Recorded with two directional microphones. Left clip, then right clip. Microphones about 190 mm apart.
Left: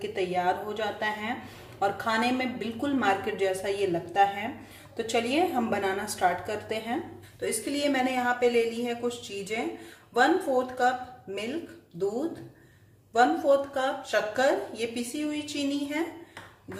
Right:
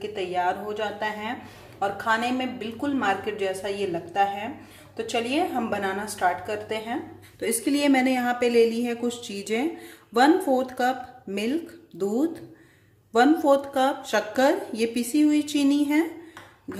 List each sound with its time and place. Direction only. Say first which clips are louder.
0.0 s a woman's voice: right 2 dB; 5° right (ahead or behind)
7.3 s a woman's voice: right 5 dB; 40° right (ahead or behind)
13.1 s speech: right 3 dB; 45° right (ahead or behind)